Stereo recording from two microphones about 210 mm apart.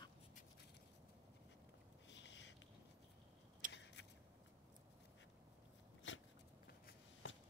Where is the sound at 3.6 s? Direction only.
55° left (ahead or behind).